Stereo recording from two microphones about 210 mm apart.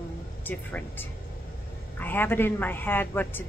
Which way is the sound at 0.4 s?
10° left (ahead or behind).